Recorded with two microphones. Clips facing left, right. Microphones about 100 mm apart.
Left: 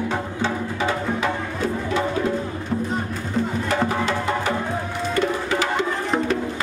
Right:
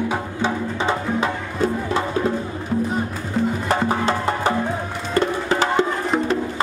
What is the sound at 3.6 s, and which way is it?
Music, 35° right (ahead or behind).